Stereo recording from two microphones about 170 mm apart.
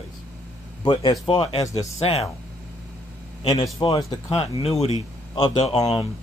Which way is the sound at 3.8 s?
25° left (ahead or behind).